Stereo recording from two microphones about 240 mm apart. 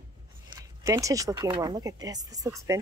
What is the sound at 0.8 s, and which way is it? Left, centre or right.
A woman's voice, centre.